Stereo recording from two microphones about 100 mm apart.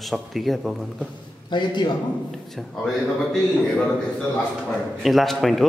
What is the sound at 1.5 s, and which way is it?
Speech, 50° left (ahead or behind).